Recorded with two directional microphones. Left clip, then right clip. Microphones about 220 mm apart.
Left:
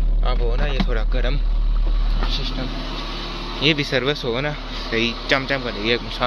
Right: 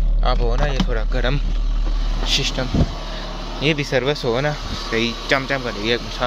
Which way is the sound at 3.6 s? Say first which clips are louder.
Even; 5° right (ahead or behind).